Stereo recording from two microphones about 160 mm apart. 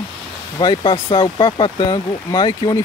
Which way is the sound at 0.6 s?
30° left (ahead or behind).